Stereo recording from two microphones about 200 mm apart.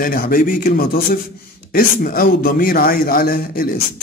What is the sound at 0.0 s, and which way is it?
A man's voice, 45° left (ahead or behind).